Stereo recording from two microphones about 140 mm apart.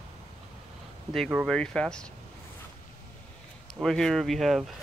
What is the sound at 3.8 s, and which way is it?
Speech, 5° left (ahead or behind).